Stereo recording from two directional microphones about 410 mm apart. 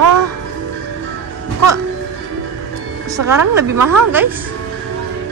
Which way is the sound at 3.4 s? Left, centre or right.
Right.